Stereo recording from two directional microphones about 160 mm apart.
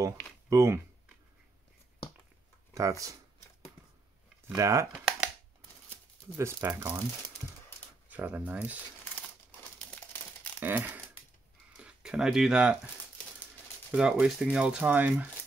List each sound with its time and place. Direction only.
0.5 s speech: 20° right (ahead or behind)
2.7 s speech: 20° right (ahead or behind)
4.6 s speech: 20° right (ahead or behind)
6.3 s speech: 15° right (ahead or behind)
8.1 s speech: 10° right (ahead or behind)
10.6 s speech: 10° right (ahead or behind)
11.7 s a sound: 5° right (ahead or behind)
13.9 s speech: 5° right (ahead or behind)